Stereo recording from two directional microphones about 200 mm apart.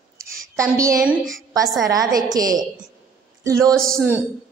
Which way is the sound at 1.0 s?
Centre (ahead or behind).